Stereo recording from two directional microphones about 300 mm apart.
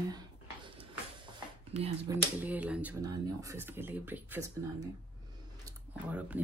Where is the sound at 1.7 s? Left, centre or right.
Centre.